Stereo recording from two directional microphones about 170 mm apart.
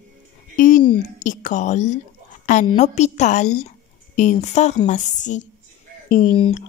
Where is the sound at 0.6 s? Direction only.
50° left (ahead or behind).